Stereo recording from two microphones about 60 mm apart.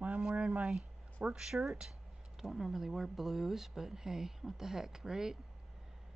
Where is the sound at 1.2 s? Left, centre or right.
Centre.